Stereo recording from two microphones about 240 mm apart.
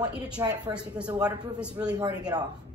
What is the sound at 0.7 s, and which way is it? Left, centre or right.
Speech, centre.